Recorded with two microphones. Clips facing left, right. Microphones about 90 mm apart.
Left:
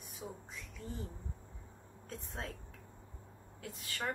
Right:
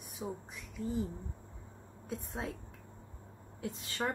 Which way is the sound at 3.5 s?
25° right (ahead or behind).